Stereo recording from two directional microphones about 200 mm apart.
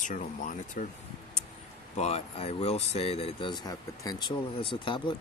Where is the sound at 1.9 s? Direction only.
30° left (ahead or behind).